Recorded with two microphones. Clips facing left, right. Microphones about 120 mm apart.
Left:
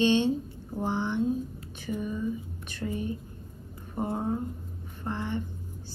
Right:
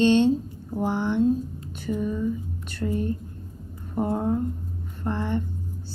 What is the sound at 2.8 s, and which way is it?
Speech, 10° right (ahead or behind).